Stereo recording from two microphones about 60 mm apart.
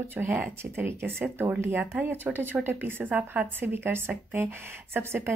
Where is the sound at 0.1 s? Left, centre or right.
Right.